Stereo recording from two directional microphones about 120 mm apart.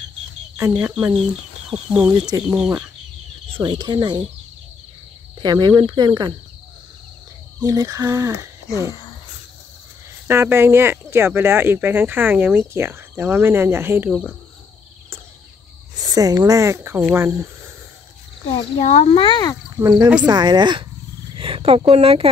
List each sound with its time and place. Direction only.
0.6 s speech: 20° right (ahead or behind)
1.7 s speech: 10° right (ahead or behind)
3.5 s speech: 40° right (ahead or behind)
5.4 s speech: 35° right (ahead or behind)
7.6 s speech: 30° right (ahead or behind)
10.2 s speech: 20° right (ahead or behind)
16.0 s speech: 30° right (ahead or behind)
18.8 s speech: 75° left (ahead or behind)
19.1 s speech: 45° left (ahead or behind)
19.8 s speech: 35° right (ahead or behind)
21.4 s speech: 50° right (ahead or behind)